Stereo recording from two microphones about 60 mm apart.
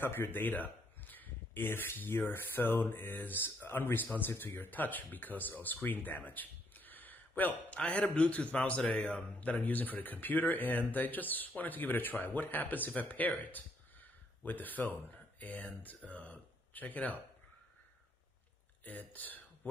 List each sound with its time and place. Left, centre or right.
0.0 s speech: left
7.7 s a man's voice: centre
18.9 s speech: left